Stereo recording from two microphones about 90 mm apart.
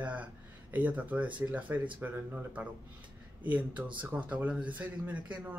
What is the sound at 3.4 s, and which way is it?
Speech, 20° right (ahead or behind).